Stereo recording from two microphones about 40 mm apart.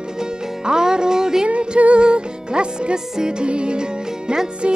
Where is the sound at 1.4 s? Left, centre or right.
Right.